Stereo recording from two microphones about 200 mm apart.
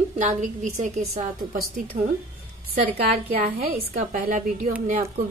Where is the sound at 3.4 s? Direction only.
35° right (ahead or behind).